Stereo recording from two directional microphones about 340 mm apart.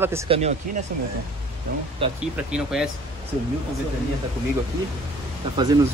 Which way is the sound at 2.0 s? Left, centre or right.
Centre.